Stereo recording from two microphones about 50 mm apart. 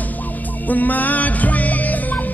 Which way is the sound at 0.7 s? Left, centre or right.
Left.